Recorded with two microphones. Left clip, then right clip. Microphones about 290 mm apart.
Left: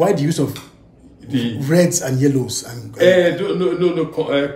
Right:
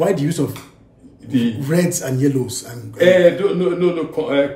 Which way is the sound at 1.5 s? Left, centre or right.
Centre.